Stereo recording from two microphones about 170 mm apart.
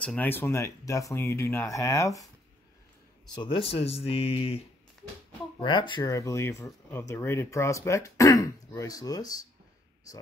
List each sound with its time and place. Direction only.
0.0 s speech: 10° left (ahead or behind)
3.5 s speech: 35° left (ahead or behind)